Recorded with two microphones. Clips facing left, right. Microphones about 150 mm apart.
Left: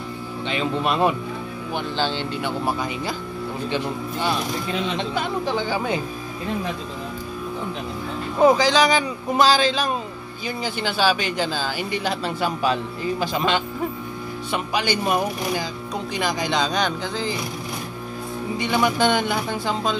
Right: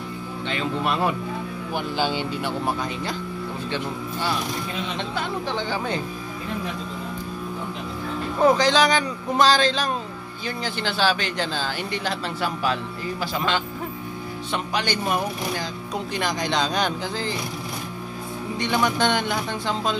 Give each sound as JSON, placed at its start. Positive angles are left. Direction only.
{"t": 0.5, "sound": "speech", "side_deg": 20}
{"t": 2.0, "sound": "speech", "side_deg": -10}
{"t": 2.6, "sound": "speech", "side_deg": 5}
{"t": 3.7, "sound": "speech", "side_deg": 15}
{"t": 5.7, "sound": "speech", "side_deg": 10}
{"t": 8.5, "sound": "speech", "side_deg": 0}
{"t": 14.5, "sound": "speech", "side_deg": 10}
{"t": 18.6, "sound": "speech", "side_deg": 10}